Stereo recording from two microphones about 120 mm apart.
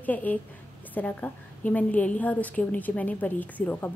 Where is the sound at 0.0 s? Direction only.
15° left (ahead or behind).